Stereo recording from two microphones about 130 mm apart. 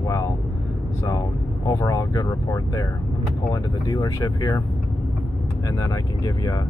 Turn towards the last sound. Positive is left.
turn(degrees=30)  # may be behind; listen again after turning